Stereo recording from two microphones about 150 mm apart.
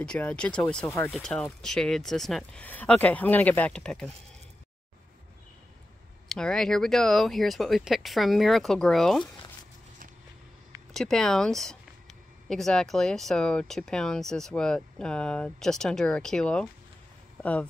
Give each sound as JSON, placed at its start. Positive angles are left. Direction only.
{"t": 0.0, "sound": "speech", "side_deg": 10}
{"t": 0.8, "sound": "speech", "side_deg": 15}
{"t": 1.1, "sound": "speech", "side_deg": 5}
{"t": 6.2, "sound": "speech", "side_deg": 5}
{"t": 10.9, "sound": "speech", "side_deg": 0}